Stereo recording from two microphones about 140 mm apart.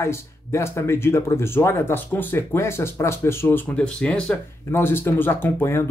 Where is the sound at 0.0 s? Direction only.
20° left (ahead or behind).